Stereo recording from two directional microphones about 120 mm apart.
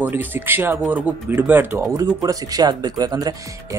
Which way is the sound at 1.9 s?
30° right (ahead or behind).